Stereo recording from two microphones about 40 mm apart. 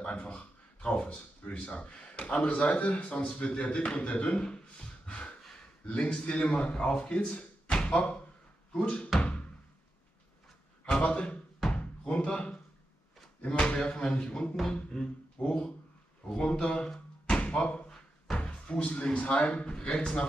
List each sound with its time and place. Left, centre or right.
0.0 s speech: left
11.0 s speech: left
11.7 s knock: left
13.7 s a man's voice: left
14.7 s a sound: left
16.3 s a man's voice: left
16.7 s a sound: centre
17.4 s slam: left
18.3 s a sound: left
19.1 s a man's voice: left